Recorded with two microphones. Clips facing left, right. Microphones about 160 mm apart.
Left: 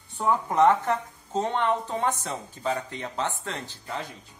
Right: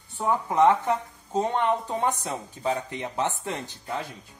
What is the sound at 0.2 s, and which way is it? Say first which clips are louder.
Speech: even; 10° right (ahead or behind).